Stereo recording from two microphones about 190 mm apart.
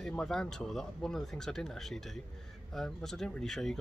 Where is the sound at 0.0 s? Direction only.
5° left (ahead or behind).